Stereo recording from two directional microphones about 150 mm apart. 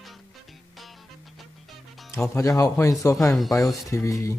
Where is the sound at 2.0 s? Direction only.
20° left (ahead or behind).